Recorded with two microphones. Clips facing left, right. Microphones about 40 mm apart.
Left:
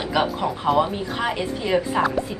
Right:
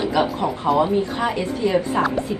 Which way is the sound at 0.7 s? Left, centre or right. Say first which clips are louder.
Right 3 dB; centre.